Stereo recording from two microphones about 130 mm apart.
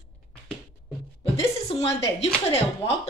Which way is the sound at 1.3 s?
50° left (ahead or behind).